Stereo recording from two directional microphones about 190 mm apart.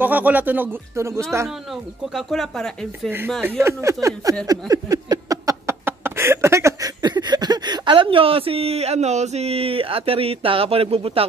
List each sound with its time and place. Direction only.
0.0 s speech: 10° right (ahead or behind)
2.1 s speech: centre (ahead or behind)
3.4 s speech: 15° right (ahead or behind)
4.5 s a sound: 20° right (ahead or behind)